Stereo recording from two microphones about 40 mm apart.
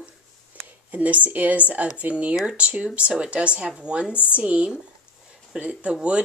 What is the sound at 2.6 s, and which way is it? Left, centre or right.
Speech, right.